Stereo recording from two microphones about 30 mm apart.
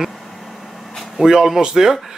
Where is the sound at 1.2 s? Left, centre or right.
Centre.